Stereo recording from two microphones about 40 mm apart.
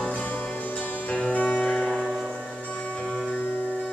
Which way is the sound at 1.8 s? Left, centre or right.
Centre.